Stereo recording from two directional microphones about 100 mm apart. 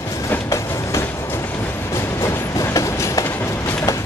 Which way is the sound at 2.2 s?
35° left (ahead or behind).